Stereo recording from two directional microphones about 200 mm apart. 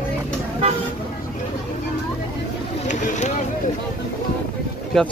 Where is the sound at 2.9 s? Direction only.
40° left (ahead or behind).